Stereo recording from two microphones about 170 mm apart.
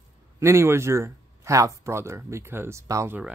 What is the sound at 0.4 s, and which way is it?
Speech, 15° right (ahead or behind).